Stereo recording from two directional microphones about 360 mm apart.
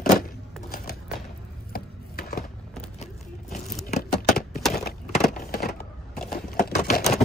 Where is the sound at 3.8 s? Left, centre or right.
Left.